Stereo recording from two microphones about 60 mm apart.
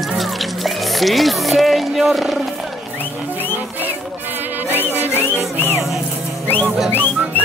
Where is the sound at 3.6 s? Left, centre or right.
Right.